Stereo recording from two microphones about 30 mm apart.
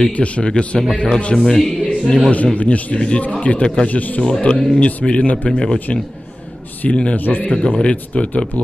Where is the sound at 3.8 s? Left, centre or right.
Left.